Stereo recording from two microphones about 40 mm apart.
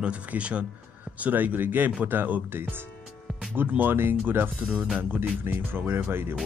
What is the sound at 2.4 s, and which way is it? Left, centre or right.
Speech, right.